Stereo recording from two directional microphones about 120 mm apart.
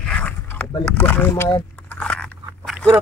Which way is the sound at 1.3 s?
30° left (ahead or behind).